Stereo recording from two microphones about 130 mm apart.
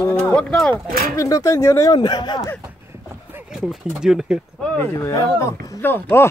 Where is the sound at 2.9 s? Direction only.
15° right (ahead or behind).